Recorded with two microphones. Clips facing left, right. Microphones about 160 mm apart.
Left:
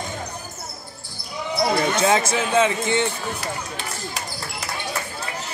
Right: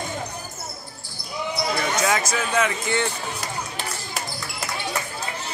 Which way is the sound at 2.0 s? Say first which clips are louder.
Left 3 dB; 30° left (ahead or behind).